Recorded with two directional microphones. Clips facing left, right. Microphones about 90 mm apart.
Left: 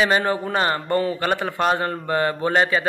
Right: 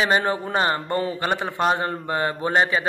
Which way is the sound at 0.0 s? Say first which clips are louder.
Left 1 dB; 25° right (ahead or behind).